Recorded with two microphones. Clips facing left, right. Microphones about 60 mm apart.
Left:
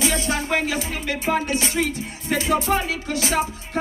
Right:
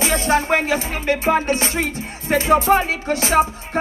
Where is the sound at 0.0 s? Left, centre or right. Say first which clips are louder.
Right 5 dB; right.